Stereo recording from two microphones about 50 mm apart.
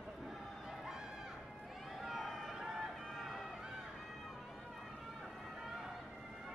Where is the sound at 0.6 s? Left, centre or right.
Centre.